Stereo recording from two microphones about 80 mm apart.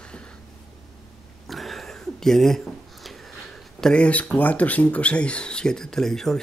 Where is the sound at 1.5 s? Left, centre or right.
Centre.